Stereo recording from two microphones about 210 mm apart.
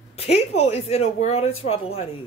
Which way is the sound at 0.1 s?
30° left (ahead or behind).